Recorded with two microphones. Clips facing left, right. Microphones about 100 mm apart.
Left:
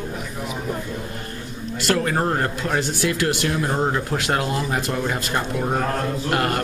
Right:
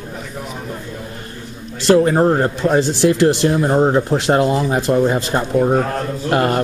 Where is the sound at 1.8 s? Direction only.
25° right (ahead or behind).